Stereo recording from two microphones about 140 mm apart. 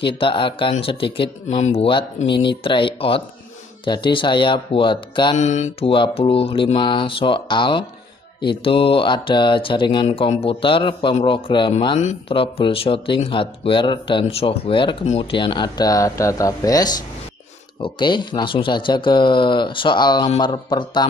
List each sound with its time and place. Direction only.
0.0 s speech: 40° left (ahead or behind)
5.4 s speech: 55° left (ahead or behind)
5.9 s speech: 40° left (ahead or behind)
10.0 s speech: 45° left (ahead or behind)